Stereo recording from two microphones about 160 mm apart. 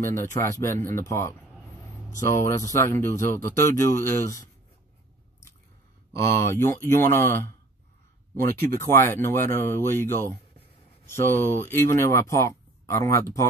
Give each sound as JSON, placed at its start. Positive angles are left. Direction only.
{"t": 0.1, "sound": "speech", "side_deg": 15}
{"t": 6.3, "sound": "speech", "side_deg": 15}